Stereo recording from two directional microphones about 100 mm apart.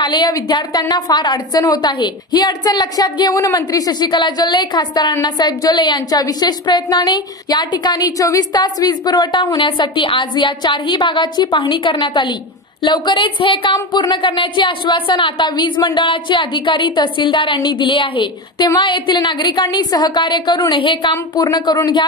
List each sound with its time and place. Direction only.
0.0 s a woman's voice: 45° left (ahead or behind)